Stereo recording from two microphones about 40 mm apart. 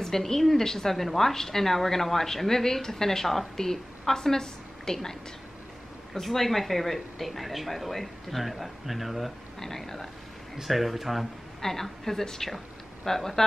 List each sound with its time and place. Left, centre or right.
0.0 s a woman's voice: centre
6.2 s speech: centre
9.6 s a woman's voice: centre
10.6 s a woman's voice: centre